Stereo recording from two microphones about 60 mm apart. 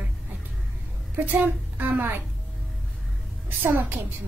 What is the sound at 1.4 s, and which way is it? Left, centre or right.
Speech, right.